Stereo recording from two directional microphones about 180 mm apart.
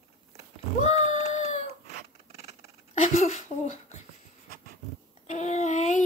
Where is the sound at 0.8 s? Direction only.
40° left (ahead or behind).